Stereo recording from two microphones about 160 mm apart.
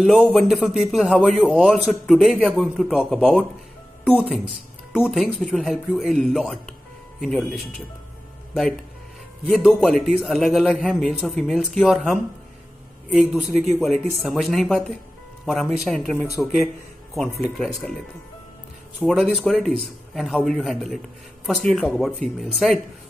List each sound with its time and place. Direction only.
0.0 s a man's voice: 5° left (ahead or behind)
9.6 s a man's voice: centre (ahead or behind)
17.4 s a man's voice: 5° left (ahead or behind)
18.9 s a man's voice: 5° right (ahead or behind)